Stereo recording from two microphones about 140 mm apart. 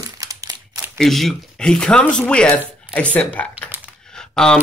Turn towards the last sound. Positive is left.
turn(degrees=5)  # may be behind; listen again after turning